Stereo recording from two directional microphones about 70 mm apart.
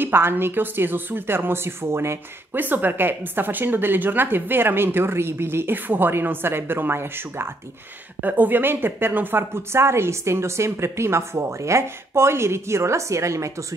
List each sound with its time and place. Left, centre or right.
0.0 s a woman's voice: right